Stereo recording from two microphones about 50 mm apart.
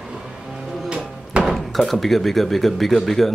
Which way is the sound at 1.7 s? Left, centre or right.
Centre.